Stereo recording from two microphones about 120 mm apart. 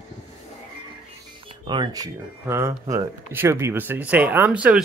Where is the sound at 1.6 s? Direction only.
35° right (ahead or behind).